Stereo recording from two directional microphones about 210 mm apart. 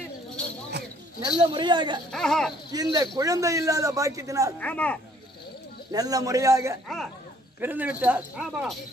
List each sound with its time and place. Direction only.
1.2 s speech: 20° right (ahead or behind)
2.1 s speech: centre (ahead or behind)
2.7 s speech: 20° right (ahead or behind)
4.6 s speech: 5° left (ahead or behind)
5.9 s speech: 15° right (ahead or behind)